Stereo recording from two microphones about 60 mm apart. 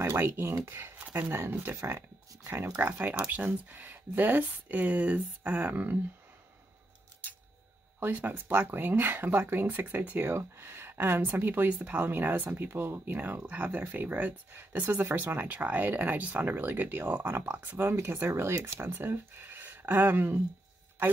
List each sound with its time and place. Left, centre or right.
0.0 s a sound: right
0.7 s speech: right
1.3 s speech: right
2.8 s speech: right
8.0 s speech: right
18.5 s speech: right
18.8 s speech: right